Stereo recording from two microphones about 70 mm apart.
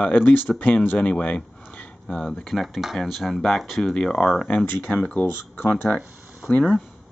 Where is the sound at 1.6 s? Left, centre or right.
Left.